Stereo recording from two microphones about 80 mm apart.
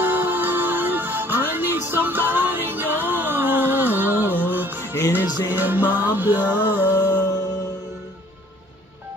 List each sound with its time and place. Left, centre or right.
0.0 s music: right